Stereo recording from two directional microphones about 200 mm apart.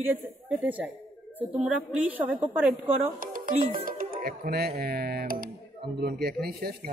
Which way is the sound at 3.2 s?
45° right (ahead or behind).